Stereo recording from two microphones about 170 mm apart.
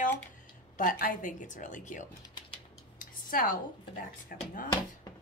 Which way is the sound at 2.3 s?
30° left (ahead or behind).